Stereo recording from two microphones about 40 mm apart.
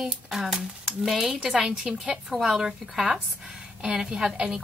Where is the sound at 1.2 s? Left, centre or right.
Centre.